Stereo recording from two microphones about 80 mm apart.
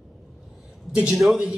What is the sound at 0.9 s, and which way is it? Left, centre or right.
Speech, centre.